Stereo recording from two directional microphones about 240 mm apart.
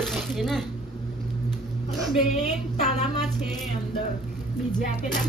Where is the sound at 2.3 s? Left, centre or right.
Left.